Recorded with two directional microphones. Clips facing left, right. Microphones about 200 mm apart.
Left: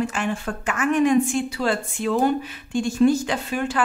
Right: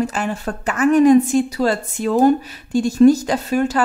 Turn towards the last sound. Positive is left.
turn(degrees=-40)  # may be behind; listen again after turning